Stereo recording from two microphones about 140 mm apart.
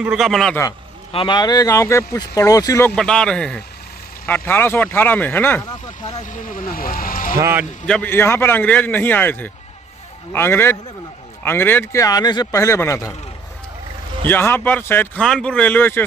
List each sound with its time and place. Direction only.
0.0 s speech: 5° right (ahead or behind)
1.1 s speech: 35° left (ahead or behind)
2.9 s a man's voice: 5° left (ahead or behind)
6.2 s speech: 70° left (ahead or behind)
7.3 s speech: 15° right (ahead or behind)
7.8 s speech: 5° left (ahead or behind)
8.1 s a man's voice: 15° left (ahead or behind)
14.2 s a man's voice: 15° left (ahead or behind)